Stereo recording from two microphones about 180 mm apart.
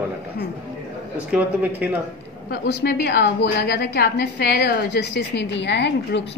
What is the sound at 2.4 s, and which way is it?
A woman's voice, 60° left (ahead or behind).